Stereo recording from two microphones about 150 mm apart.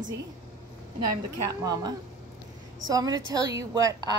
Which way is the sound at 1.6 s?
25° right (ahead or behind).